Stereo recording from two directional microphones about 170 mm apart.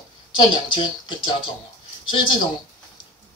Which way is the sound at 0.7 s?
25° left (ahead or behind).